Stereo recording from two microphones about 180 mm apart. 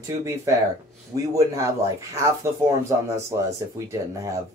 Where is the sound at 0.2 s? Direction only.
15° right (ahead or behind).